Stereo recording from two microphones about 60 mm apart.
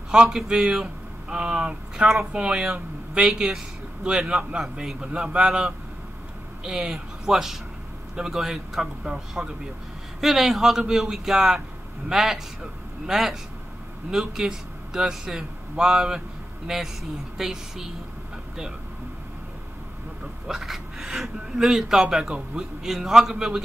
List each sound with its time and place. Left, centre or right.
0.1 s a man's voice: centre
20.4 s speech: centre